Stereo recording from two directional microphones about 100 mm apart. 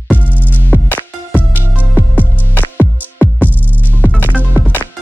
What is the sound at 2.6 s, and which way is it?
Music, 20° left (ahead or behind).